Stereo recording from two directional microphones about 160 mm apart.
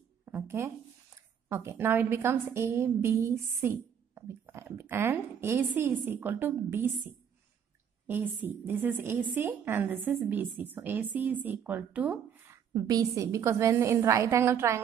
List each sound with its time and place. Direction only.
0.2 s a sound: 15° right (ahead or behind)
1.1 s a woman's voice: 15° right (ahead or behind)
12.7 s a woman's voice: 25° right (ahead or behind)